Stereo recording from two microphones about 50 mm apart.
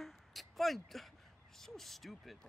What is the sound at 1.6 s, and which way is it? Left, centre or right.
Speech, centre.